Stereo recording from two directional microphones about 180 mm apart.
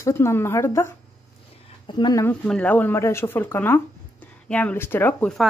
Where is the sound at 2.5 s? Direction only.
10° left (ahead or behind).